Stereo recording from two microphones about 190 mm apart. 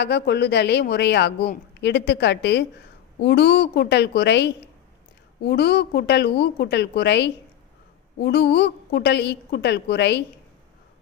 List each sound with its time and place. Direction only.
0.0 s a woman's voice: 60° left (ahead or behind)